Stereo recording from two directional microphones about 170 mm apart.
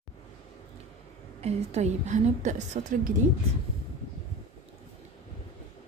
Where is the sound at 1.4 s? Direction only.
40° right (ahead or behind).